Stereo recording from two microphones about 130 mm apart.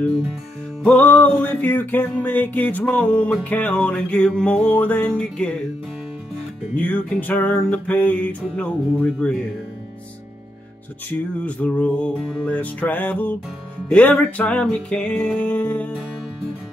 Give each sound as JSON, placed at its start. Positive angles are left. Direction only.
{"t": 0.8, "sound": "music", "side_deg": 10}
{"t": 6.8, "sound": "music", "side_deg": 10}
{"t": 11.4, "sound": "music", "side_deg": 10}